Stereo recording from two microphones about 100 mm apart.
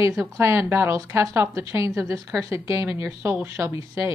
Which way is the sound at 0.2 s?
30° right (ahead or behind).